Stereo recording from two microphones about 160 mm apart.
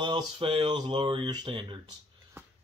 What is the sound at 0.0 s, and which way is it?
Speech, 30° right (ahead or behind).